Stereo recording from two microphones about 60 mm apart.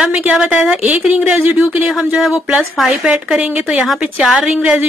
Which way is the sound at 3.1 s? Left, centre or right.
Centre.